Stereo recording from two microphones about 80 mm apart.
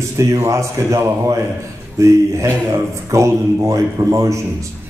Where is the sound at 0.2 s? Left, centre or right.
Right.